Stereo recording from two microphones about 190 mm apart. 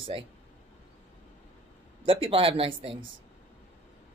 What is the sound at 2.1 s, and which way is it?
Speech, 30° right (ahead or behind).